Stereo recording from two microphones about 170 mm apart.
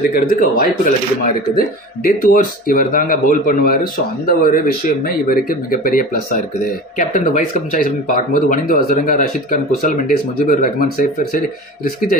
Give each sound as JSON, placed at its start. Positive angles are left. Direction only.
{"t": 0.1, "sound": "speech", "side_deg": 55}
{"t": 2.0, "sound": "speech", "side_deg": 55}